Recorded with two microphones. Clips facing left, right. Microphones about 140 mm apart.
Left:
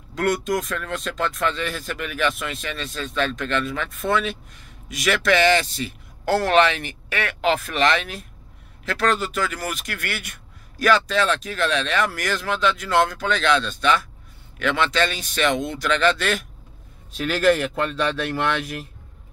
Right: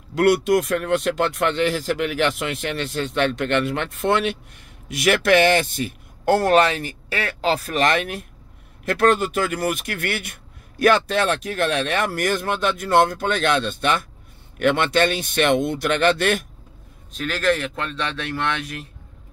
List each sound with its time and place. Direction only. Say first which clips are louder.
0.1 s speech: right 6 dB; 70° right (ahead or behind); by 16.4 s 55° right (ahead or behind)
17.1 s speech: left 3 dB; 5° left (ahead or behind)